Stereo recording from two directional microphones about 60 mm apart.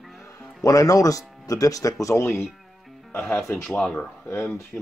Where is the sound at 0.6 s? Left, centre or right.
Left.